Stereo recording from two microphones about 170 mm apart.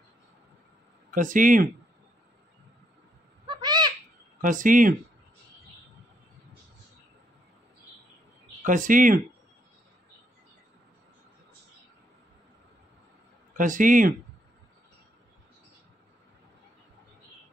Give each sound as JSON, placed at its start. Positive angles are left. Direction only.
{"t": 1.1, "sound": "speech", "side_deg": -50}
{"t": 3.4, "sound": "owl", "side_deg": -25}
{"t": 4.4, "sound": "speech", "side_deg": -50}
{"t": 8.6, "sound": "speech", "side_deg": -50}
{"t": 13.6, "sound": "speech", "side_deg": -50}